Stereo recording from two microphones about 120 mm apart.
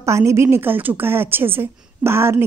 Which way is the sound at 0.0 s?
25° right (ahead or behind).